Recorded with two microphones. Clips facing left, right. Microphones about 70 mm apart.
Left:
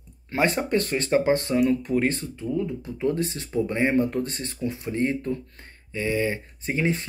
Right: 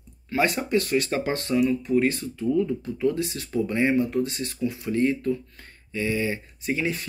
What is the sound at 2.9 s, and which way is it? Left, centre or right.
Speech, left.